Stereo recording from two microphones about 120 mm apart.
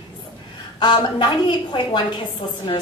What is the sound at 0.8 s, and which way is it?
A woman's voice, 40° left (ahead or behind).